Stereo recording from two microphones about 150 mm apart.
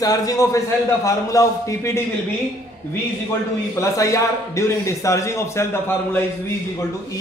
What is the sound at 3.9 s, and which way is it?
A man's voice, 20° left (ahead or behind).